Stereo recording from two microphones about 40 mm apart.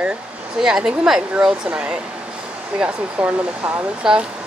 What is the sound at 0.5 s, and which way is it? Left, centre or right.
Speech, centre.